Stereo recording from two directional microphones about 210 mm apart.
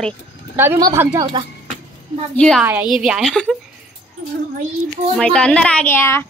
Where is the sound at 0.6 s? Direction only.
15° right (ahead or behind).